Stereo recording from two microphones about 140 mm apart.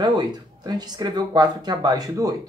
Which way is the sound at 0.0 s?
30° right (ahead or behind).